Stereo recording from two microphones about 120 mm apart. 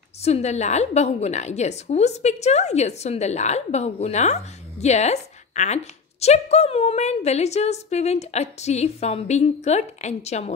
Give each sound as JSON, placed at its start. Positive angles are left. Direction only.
{"t": 0.2, "sound": "a woman's voice", "side_deg": 65}
{"t": 6.2, "sound": "a woman's voice", "side_deg": 60}